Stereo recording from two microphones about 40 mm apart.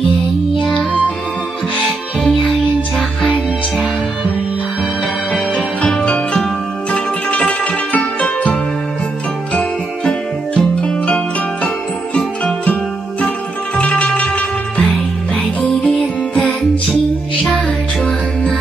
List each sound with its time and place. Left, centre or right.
6.9 s music: left
13.7 s music: left